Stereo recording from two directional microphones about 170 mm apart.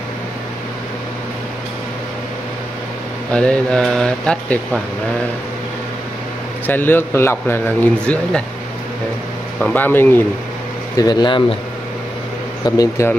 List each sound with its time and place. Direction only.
3.3 s speech: 5° left (ahead or behind)
6.6 s a man's voice: 10° left (ahead or behind)
9.6 s a man's voice: 10° left (ahead or behind)
11.0 s speech: 25° left (ahead or behind)
12.6 s speech: 20° left (ahead or behind)